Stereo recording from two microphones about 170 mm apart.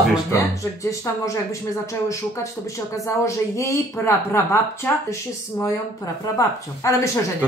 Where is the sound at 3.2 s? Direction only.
15° left (ahead or behind).